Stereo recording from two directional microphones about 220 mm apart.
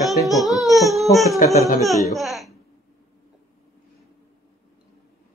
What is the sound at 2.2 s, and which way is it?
Speech, centre (ahead or behind).